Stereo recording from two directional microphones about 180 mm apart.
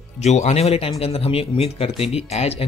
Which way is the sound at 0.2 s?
40° left (ahead or behind).